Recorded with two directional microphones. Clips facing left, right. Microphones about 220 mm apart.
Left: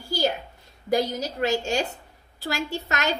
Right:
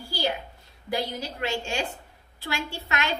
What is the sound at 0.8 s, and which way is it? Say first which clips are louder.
A woman's voice: left 6 dB; 40° left (ahead or behind).